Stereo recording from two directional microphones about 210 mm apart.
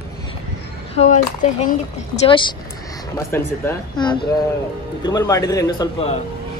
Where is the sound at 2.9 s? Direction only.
15° left (ahead or behind).